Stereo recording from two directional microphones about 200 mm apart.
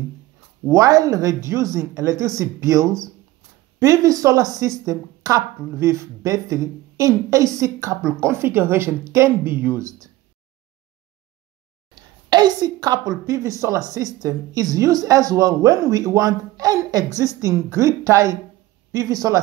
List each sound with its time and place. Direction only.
0.7 s speech: 15° right (ahead or behind)
12.3 s a woman's voice: 20° right (ahead or behind)